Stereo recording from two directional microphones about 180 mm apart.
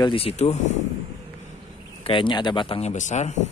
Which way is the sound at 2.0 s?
30° left (ahead or behind).